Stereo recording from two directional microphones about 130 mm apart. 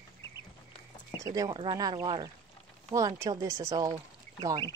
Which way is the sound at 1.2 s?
30° right (ahead or behind).